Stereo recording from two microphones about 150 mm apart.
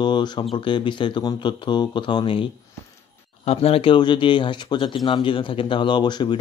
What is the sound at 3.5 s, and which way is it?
Speech, 40° left (ahead or behind).